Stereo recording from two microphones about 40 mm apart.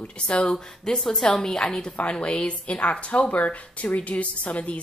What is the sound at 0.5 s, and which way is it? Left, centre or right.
A woman's voice, centre.